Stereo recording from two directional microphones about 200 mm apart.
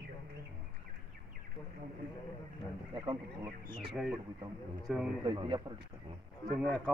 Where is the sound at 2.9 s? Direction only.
20° right (ahead or behind).